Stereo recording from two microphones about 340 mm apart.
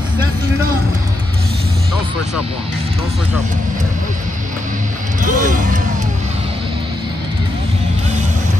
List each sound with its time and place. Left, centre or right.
5.2 s speech: right